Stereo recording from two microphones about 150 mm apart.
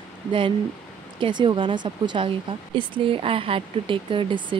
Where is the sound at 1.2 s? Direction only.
30° right (ahead or behind).